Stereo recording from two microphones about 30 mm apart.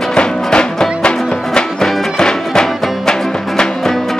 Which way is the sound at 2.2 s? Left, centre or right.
Left.